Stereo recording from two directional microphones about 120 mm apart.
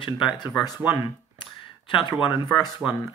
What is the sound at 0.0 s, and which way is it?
Speech, 40° left (ahead or behind).